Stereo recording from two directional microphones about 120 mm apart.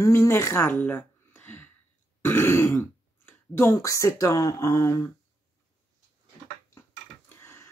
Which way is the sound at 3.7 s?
25° left (ahead or behind).